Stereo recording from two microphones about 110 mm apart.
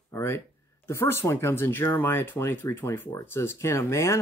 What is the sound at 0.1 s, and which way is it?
Speech, 25° left (ahead or behind).